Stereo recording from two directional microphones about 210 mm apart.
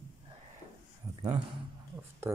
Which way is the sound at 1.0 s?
15° right (ahead or behind).